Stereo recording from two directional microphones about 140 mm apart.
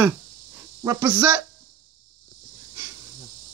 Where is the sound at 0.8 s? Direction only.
25° right (ahead or behind).